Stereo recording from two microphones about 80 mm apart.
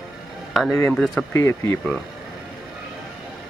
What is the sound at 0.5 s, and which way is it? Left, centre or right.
Speech, centre.